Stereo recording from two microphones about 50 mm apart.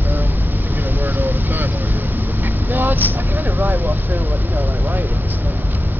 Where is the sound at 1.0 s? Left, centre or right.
Right.